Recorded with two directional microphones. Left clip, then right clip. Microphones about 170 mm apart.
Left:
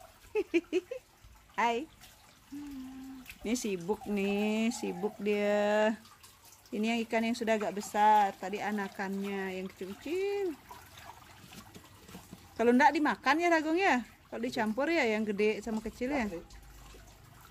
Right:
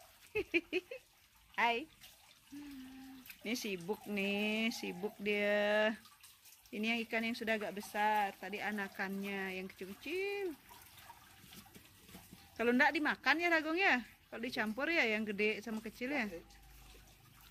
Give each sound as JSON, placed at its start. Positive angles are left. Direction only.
{"t": 0.3, "sound": "a sound", "side_deg": 0}
{"t": 1.5, "sound": "speech", "side_deg": 0}
{"t": 3.4, "sound": "speech", "side_deg": 5}
{"t": 12.5, "sound": "speech", "side_deg": 10}